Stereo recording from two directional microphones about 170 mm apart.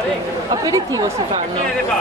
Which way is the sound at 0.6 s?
20° right (ahead or behind).